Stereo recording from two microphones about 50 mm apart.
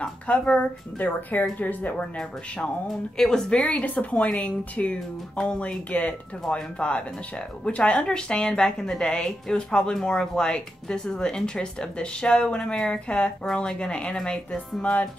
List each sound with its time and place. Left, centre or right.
0.0 s a woman's voice: left
3.2 s speech: centre
3.8 s a woman's voice: left; by 14.6 s centre